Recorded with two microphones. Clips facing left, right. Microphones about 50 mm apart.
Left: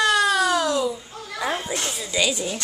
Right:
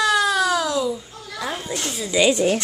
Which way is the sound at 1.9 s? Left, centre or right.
Centre.